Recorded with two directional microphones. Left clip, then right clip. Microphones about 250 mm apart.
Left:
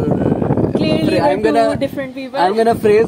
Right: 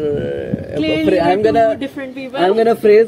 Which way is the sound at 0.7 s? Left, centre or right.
Centre.